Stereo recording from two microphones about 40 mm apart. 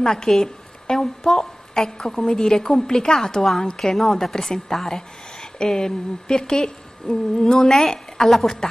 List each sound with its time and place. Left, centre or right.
0.0 s a woman's voice: centre